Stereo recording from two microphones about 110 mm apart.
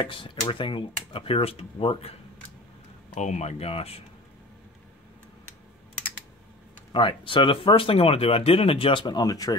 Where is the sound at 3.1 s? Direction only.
90° left; by 4.0 s 65° left (ahead or behind).